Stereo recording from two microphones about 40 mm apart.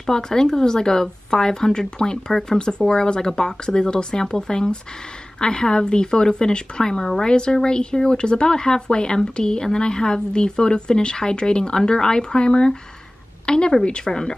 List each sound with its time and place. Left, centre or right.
0.0 s a woman's voice: centre